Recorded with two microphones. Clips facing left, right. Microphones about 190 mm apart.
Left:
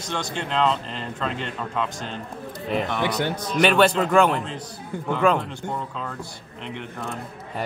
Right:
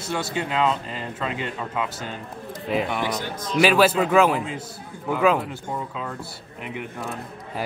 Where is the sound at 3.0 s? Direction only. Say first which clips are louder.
Left 3 dB; 70° left (ahead or behind).